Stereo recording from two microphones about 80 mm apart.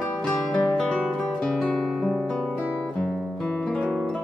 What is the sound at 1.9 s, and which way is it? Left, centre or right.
Guitar, centre.